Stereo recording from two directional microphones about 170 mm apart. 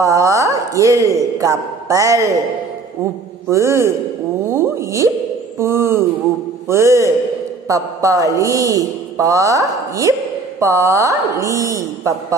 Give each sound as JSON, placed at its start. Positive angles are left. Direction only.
{"t": 0.0, "sound": "speech", "side_deg": -20}
{"t": 3.4, "sound": "a woman's voice", "side_deg": -15}
{"t": 4.5, "sound": "a sound", "side_deg": -15}
{"t": 5.6, "sound": "a woman's voice", "side_deg": -15}